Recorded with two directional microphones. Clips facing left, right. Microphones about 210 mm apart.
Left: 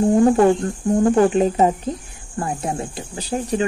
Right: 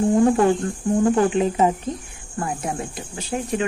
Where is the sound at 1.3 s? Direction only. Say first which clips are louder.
Left 2 dB; 40° left (ahead or behind).